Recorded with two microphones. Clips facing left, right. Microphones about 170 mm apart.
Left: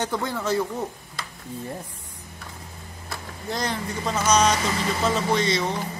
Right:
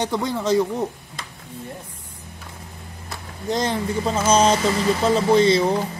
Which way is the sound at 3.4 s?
25° right (ahead or behind).